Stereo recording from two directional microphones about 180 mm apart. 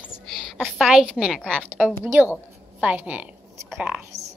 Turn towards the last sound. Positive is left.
turn(degrees=-5)  # may be behind; listen again after turning